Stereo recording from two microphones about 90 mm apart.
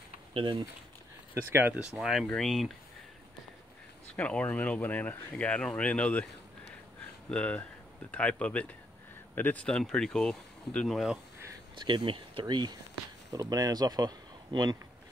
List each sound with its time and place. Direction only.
0.3 s speech: 80° right
1.3 s speech: 30° right (ahead or behind)
1.9 s speech: 5° right (ahead or behind)
4.2 s speech: 15° left (ahead or behind)
7.2 s speech: 10° left (ahead or behind)
10.9 s speech: centre (ahead or behind)
11.7 s speech: 60° right (ahead or behind)
13.3 s speech: 45° right (ahead or behind)